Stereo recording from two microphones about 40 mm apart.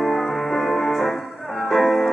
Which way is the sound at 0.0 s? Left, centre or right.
Centre.